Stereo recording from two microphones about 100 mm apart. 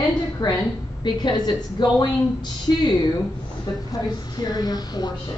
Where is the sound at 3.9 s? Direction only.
40° left (ahead or behind).